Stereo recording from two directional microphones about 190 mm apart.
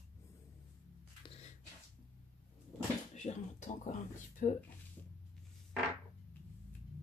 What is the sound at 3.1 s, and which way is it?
Speech, 35° left (ahead or behind).